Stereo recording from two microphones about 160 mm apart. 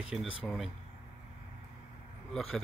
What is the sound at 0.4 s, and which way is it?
Speech, centre (ahead or behind).